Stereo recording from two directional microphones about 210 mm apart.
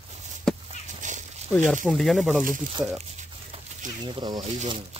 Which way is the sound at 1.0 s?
35° right (ahead or behind).